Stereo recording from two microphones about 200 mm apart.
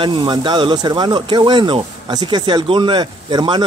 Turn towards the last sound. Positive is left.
turn(degrees=-20)  # may be behind; listen again after turning